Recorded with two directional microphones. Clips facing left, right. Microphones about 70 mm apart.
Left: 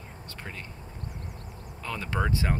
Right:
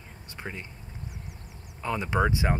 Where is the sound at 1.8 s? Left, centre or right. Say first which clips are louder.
Right 5 dB; centre.